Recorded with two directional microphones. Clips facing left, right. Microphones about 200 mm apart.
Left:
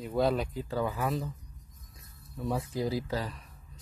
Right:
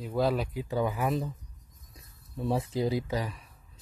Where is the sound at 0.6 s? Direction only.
15° right (ahead or behind).